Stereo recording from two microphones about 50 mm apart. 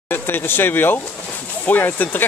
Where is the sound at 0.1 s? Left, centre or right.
Left.